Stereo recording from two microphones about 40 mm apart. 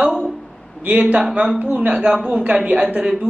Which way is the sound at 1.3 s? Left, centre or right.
Right.